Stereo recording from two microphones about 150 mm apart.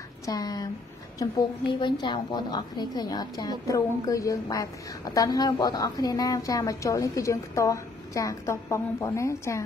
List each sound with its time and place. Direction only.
0.3 s a woman's voice: 25° left (ahead or behind)
1.7 s a woman's voice: 30° left (ahead or behind)